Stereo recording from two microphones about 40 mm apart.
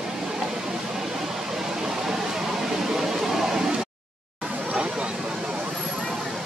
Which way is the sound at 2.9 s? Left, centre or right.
Centre.